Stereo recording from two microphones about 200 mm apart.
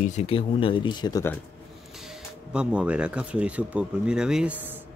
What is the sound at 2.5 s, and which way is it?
Speech, 5° right (ahead or behind).